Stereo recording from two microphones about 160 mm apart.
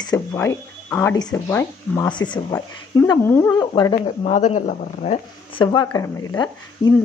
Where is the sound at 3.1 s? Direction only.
15° left (ahead or behind).